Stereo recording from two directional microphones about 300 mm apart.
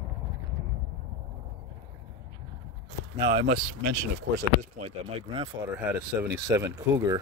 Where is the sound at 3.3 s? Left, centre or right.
Right.